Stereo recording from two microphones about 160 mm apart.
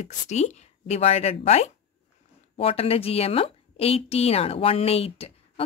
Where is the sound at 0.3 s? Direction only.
45° left (ahead or behind).